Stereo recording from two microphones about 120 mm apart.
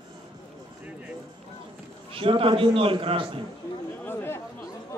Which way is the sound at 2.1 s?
50° right (ahead or behind).